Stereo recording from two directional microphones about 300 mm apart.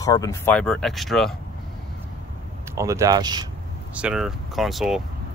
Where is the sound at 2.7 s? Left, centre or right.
Centre.